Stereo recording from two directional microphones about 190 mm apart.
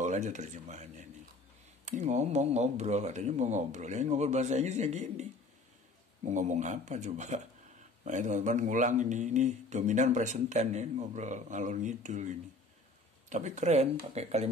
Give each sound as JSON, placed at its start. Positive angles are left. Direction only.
{"t": 0.0, "sound": "speech", "side_deg": -40}
{"t": 6.2, "sound": "speech", "side_deg": -40}